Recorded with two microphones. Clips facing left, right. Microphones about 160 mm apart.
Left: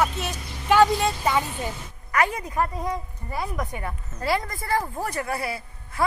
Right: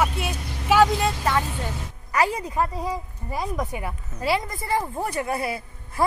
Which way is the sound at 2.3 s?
20° right (ahead or behind).